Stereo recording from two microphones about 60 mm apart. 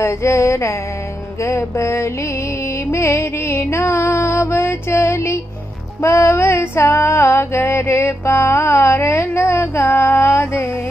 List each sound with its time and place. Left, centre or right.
0.0 s female singing: left